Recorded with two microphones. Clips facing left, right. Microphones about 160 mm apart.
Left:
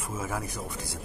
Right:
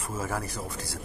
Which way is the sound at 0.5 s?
20° left (ahead or behind).